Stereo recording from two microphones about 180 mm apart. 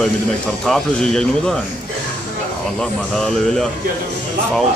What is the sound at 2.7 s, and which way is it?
Speech, 5° left (ahead or behind).